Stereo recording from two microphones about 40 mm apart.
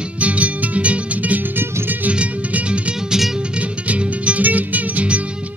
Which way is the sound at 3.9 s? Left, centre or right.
Right.